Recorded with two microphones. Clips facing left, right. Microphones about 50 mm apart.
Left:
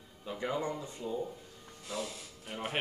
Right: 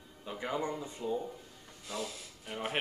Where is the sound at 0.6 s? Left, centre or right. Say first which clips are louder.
Even; right.